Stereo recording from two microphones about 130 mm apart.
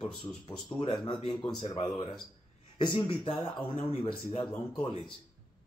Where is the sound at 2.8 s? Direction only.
40° left (ahead or behind).